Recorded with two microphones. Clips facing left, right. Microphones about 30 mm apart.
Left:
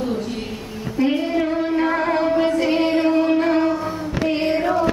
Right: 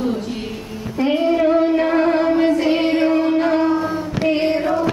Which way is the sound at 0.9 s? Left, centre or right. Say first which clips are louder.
Right 3 dB; centre.